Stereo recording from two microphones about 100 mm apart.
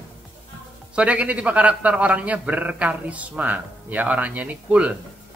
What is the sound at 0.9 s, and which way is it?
Speech, 10° right (ahead or behind).